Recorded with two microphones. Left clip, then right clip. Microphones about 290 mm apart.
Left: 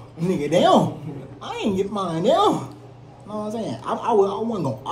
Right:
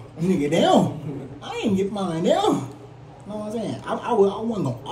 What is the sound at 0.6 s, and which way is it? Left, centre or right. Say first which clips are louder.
A man's voice: left 3 dB; centre.